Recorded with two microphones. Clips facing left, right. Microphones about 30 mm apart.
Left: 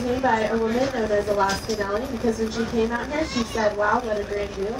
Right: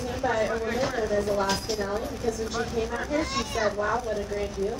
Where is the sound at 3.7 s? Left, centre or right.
Centre.